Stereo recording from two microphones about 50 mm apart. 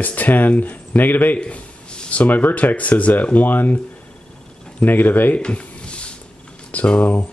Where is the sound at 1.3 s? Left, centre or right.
Left.